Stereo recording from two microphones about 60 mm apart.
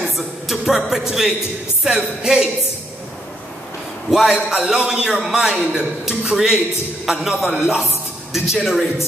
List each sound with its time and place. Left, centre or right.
0.0 s a man's voice: centre
4.1 s a man's voice: centre